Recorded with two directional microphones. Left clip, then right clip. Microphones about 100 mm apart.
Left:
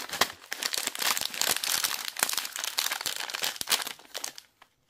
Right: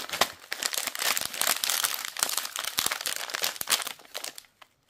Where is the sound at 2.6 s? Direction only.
20° right (ahead or behind).